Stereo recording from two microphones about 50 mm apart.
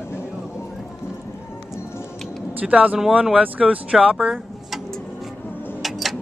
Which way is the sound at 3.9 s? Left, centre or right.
Centre.